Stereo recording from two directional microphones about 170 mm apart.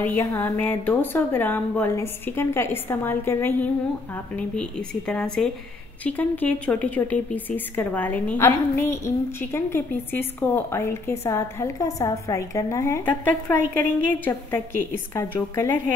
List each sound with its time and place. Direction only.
0.0 s speech: 10° left (ahead or behind)